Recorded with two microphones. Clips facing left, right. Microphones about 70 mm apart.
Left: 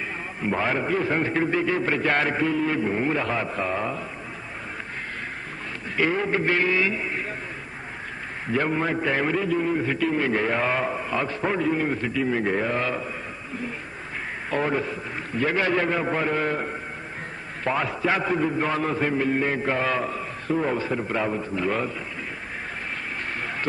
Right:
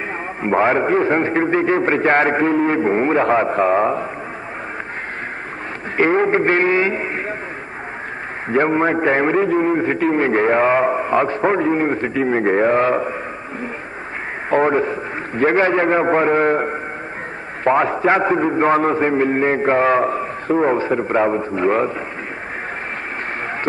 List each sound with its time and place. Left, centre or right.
0.4 s a man's voice: right
5.9 s a man's voice: right
8.5 s a man's voice: right
14.5 s a man's voice: right